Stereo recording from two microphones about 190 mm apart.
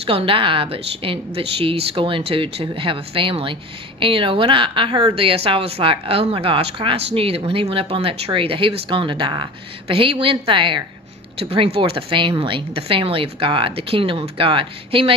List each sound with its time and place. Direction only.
0.0 s speech: 30° right (ahead or behind)